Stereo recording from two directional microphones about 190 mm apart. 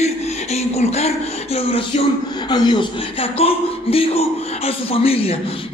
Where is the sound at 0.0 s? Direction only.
35° left (ahead or behind).